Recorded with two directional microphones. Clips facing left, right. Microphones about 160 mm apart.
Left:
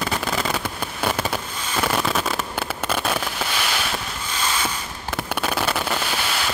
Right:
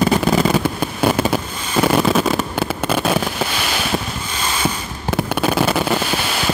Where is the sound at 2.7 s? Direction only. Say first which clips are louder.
Right 5 dB; 10° right (ahead or behind).